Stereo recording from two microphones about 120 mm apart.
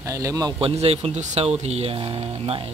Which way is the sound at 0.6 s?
55° right (ahead or behind).